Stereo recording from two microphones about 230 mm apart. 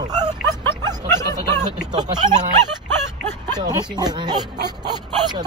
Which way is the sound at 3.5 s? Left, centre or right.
Centre.